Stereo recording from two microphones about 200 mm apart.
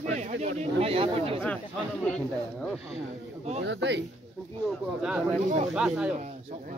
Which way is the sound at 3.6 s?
60° right (ahead or behind).